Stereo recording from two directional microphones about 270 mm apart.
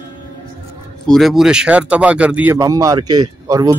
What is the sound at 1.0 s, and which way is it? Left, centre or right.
Speech, centre.